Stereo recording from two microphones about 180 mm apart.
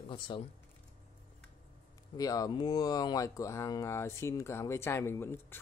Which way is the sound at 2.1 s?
20° left (ahead or behind).